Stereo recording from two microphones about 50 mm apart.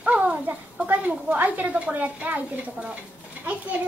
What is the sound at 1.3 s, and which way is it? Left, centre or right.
A woman's voice, right.